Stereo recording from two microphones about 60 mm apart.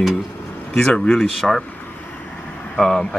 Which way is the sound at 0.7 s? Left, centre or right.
Centre.